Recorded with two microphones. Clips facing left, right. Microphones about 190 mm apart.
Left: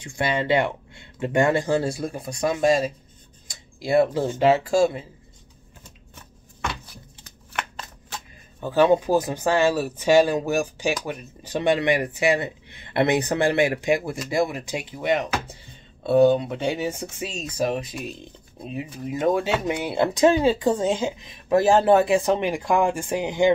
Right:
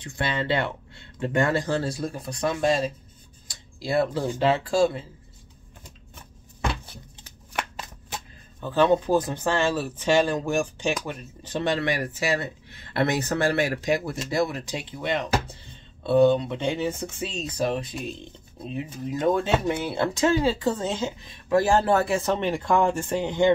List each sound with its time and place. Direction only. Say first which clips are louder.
0.0 s speech: left 3 dB; 15° left (ahead or behind)
6.6 s a sound: right 2 dB; 30° right (ahead or behind)
7.2 s shuffling cards: right 1 dB; 15° right (ahead or behind)
8.5 s speech: left 2 dB; 10° left (ahead or behind)